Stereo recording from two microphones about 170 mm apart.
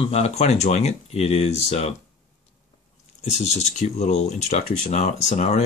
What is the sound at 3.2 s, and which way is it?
Speech, 40° left (ahead or behind).